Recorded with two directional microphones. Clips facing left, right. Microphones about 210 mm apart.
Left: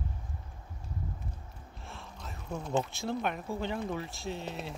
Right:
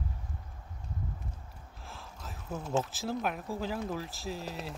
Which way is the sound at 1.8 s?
Centre (ahead or behind).